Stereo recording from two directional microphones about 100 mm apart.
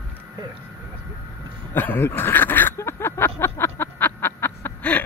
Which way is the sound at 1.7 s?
20° left (ahead or behind).